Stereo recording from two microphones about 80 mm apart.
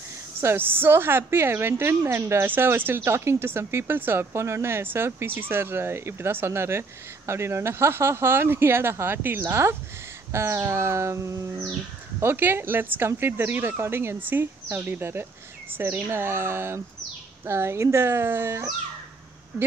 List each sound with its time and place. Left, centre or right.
0.4 s a woman's voice: right